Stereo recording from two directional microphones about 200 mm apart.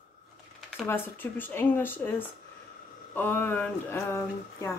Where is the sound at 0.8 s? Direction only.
10° left (ahead or behind).